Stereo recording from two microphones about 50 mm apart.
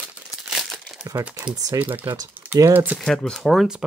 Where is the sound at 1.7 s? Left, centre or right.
Right.